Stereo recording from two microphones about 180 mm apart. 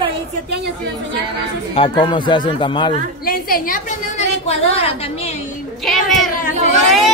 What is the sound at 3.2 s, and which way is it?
Speech, 55° left (ahead or behind).